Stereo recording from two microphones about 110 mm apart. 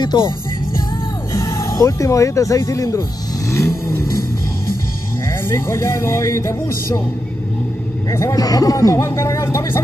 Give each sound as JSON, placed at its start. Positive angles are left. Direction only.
{"t": 0.0, "sound": "music", "side_deg": 40}
{"t": 1.3, "sound": "speech", "side_deg": 30}
{"t": 5.7, "sound": "speech", "side_deg": 25}
{"t": 8.1, "sound": "speech", "side_deg": 30}